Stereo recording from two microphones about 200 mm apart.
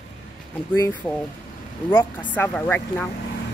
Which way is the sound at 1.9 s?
10° left (ahead or behind).